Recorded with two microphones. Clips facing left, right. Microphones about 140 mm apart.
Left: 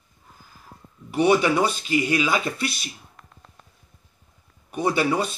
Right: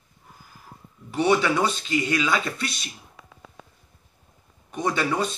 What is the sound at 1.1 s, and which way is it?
Speech, 10° left (ahead or behind).